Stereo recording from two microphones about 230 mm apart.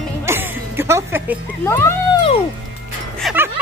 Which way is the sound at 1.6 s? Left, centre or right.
Centre.